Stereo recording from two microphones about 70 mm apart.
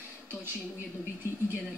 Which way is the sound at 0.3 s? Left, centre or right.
Right.